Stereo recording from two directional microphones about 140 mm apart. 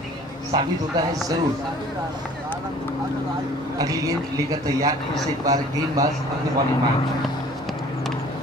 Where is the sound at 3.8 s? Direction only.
25° right (ahead or behind).